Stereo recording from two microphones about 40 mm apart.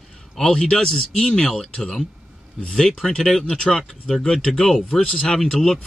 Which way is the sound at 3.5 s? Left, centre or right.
Centre.